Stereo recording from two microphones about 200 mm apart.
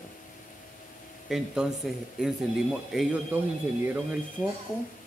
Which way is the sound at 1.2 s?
Centre (ahead or behind).